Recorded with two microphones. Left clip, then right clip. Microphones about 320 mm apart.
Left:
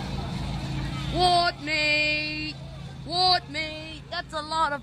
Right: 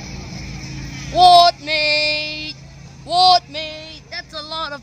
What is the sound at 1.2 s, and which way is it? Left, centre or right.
Child singing, centre.